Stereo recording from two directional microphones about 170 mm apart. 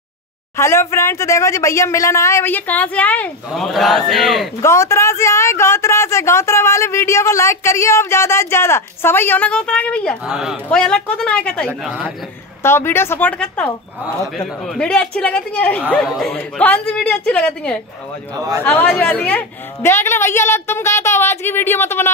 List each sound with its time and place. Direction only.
0.6 s a man's voice: 15° left (ahead or behind)
4.6 s a man's voice: 15° left (ahead or behind)
10.3 s speech: 5° right (ahead or behind)
10.7 s speech: 5° left (ahead or behind)
12.6 s a man's voice: 15° left (ahead or behind)